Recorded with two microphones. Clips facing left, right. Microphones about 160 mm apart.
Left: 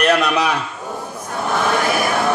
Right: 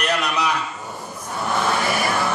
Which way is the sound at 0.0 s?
60° left (ahead or behind).